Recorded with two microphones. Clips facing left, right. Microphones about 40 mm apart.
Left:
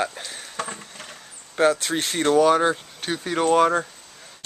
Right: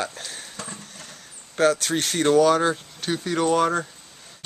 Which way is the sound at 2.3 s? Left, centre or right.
Left.